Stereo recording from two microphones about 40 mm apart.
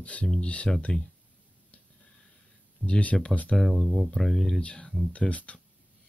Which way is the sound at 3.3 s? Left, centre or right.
Left.